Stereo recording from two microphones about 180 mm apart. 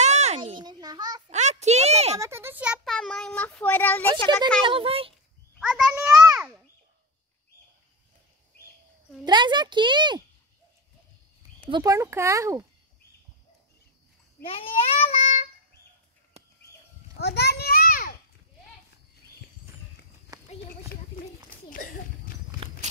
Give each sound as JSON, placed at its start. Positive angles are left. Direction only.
{"t": 0.0, "sound": "a sound", "side_deg": -40}
{"t": 1.3, "sound": "a sound", "side_deg": -40}
{"t": 2.1, "sound": "a child's voice", "side_deg": -15}
{"t": 4.6, "sound": "a child's voice", "side_deg": -30}
{"t": 5.6, "sound": "a sound", "side_deg": -5}
{"t": 9.2, "sound": "speech", "side_deg": -25}
{"t": 11.7, "sound": "speech", "side_deg": -20}
{"t": 14.4, "sound": "child singing", "side_deg": 30}
{"t": 17.2, "sound": "children playing", "side_deg": 65}
{"t": 20.3, "sound": "horse", "side_deg": -20}
{"t": 21.6, "sound": "a sound", "side_deg": 50}
{"t": 22.6, "sound": "walk", "side_deg": -30}